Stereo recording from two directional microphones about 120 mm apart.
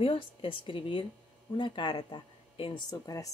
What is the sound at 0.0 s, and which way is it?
A woman's voice, 50° left (ahead or behind).